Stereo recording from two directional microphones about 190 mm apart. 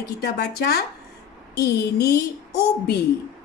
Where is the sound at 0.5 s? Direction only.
55° left (ahead or behind).